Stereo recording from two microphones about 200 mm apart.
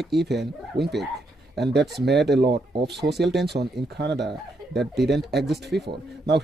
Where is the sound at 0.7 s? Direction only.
55° right (ahead or behind).